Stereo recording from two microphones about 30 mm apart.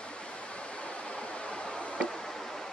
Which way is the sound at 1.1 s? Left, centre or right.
Left.